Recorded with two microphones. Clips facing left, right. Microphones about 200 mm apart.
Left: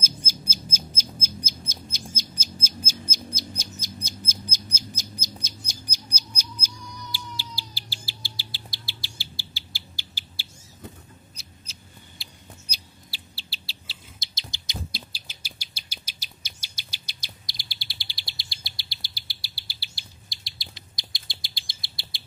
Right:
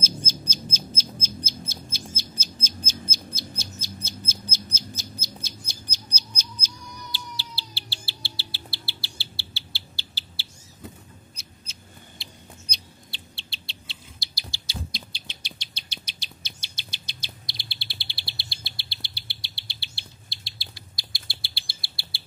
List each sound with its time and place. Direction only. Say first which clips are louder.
0.0 s bird: right 4 dB; 10° left (ahead or behind)
11.3 s a sound: even; centre (ahead or behind)
14.2 s bird: right 1 dB; 20° left (ahead or behind)
14.9 s bird: right 1 dB; 5° left (ahead or behind)